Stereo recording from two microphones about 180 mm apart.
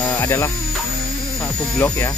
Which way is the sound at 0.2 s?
15° left (ahead or behind).